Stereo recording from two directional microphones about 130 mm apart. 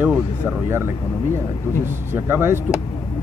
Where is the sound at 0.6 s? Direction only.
20° right (ahead or behind).